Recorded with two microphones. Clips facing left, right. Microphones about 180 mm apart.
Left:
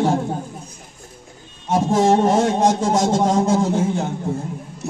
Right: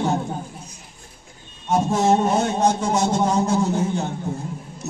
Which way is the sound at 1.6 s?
90° left.